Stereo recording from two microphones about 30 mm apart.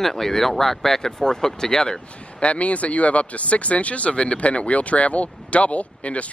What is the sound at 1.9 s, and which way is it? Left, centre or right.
Speech, left.